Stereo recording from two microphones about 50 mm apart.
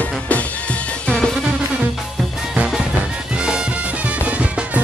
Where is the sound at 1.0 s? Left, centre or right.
Centre.